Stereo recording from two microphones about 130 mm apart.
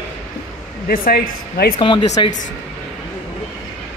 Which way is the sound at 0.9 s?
90° left.